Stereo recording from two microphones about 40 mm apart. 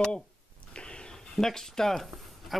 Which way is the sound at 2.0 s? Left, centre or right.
Centre.